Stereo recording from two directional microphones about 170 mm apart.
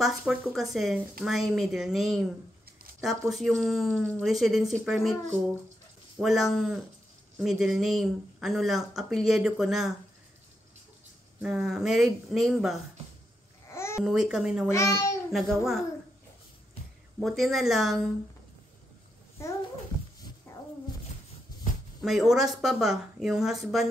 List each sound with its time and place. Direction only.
0.0 s speech: centre (ahead or behind)
6.1 s speech: centre (ahead or behind)
11.3 s speech: 5° right (ahead or behind)
13.7 s babbling: 15° left (ahead or behind)
14.0 s speech: 5° right (ahead or behind)
14.7 s a child's voice: 20° left (ahead or behind)
15.3 s speech: centre (ahead or behind)
17.2 s speech: centre (ahead or behind)
20.5 s roaring cats: 15° left (ahead or behind)
22.0 s speech: centre (ahead or behind)